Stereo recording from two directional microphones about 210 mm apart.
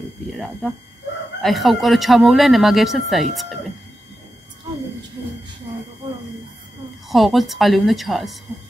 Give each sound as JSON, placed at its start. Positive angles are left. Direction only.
{"t": 0.3, "sound": "speech", "side_deg": 0}
{"t": 7.1, "sound": "speech", "side_deg": 0}